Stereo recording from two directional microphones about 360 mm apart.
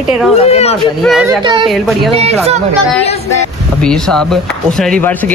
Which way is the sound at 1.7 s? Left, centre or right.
Centre.